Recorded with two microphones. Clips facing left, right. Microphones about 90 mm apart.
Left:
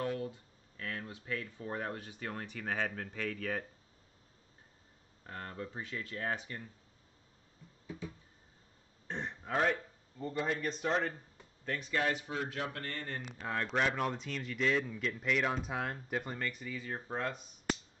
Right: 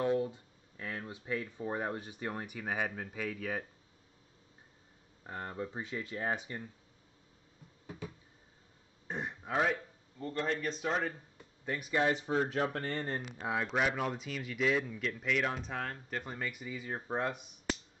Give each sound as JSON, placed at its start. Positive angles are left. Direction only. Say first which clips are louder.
{"t": 0.0, "sound": "speech", "louder": "right 5 dB", "side_deg": -25}
{"t": 5.2, "sound": "speech", "louder": "right 3 dB", "side_deg": -20}
{"t": 9.0, "sound": "a man's voice", "louder": "right 1 dB", "side_deg": -10}
{"t": 12.3, "sound": "speech", "louder": "right 6 dB", "side_deg": -35}
{"t": 13.5, "sound": "speech", "louder": "right 1 dB", "side_deg": -5}
{"t": 16.3, "sound": "speech", "louder": "even", "side_deg": -10}